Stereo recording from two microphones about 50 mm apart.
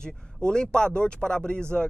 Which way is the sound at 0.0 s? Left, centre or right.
Centre.